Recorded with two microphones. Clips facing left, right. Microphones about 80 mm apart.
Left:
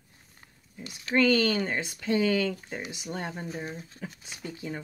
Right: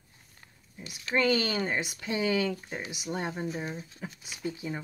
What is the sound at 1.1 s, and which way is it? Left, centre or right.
Speech, centre.